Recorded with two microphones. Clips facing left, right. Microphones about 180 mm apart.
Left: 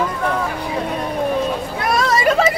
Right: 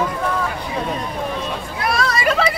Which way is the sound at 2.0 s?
45° left (ahead or behind).